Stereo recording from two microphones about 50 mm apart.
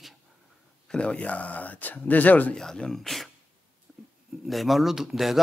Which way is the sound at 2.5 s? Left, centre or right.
Centre.